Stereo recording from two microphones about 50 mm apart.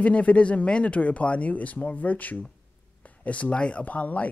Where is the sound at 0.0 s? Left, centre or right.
Left.